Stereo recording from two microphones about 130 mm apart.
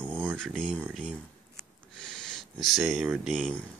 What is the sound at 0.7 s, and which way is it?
Speech, 10° right (ahead or behind).